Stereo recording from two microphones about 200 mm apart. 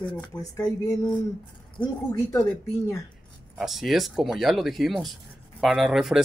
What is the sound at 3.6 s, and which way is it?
Speech, centre (ahead or behind).